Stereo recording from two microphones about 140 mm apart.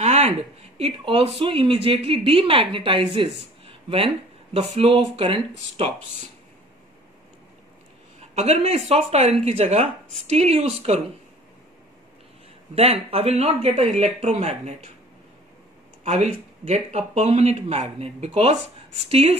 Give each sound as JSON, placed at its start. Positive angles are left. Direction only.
{"t": 0.0, "sound": "a woman's voice", "side_deg": -55}
{"t": 4.6, "sound": "speech", "side_deg": -40}
{"t": 8.4, "sound": "speech", "side_deg": -50}
{"t": 12.7, "sound": "speech", "side_deg": -45}
{"t": 16.0, "sound": "speech", "side_deg": -50}